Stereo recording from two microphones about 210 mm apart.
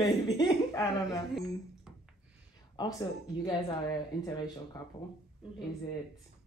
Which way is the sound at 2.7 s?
20° left (ahead or behind).